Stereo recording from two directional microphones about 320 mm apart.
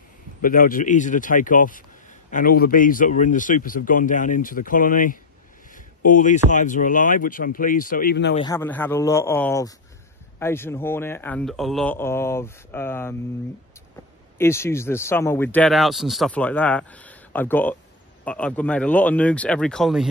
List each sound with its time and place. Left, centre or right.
0.4 s speech: left
8.4 s a man's voice: centre
14.4 s speech: centre